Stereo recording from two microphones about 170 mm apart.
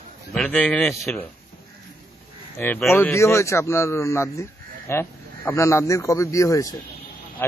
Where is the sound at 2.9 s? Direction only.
15° left (ahead or behind).